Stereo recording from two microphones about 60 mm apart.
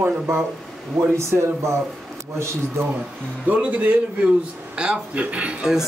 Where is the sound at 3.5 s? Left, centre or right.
Right.